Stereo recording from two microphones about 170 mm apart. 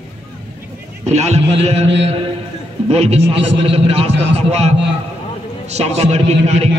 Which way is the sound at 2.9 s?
35° right (ahead or behind).